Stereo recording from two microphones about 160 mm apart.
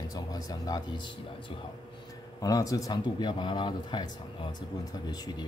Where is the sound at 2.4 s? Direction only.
20° left (ahead or behind).